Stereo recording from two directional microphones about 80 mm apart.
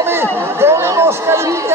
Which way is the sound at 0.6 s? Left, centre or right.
Right.